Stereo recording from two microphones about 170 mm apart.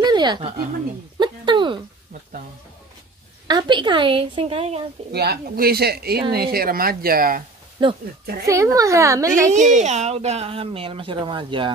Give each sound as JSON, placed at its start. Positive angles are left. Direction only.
{"t": 0.0, "sound": "a sound", "side_deg": -25}
{"t": 3.4, "sound": "a woman's voice", "side_deg": -25}
{"t": 5.1, "sound": "speech", "side_deg": -70}
{"t": 7.8, "sound": "a woman's voice", "side_deg": -30}
{"t": 9.5, "sound": "speech", "side_deg": -45}